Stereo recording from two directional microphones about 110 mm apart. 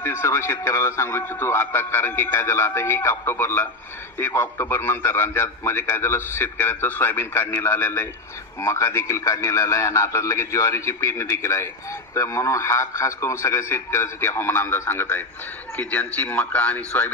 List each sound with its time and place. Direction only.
0.0 s a man's voice: 20° left (ahead or behind)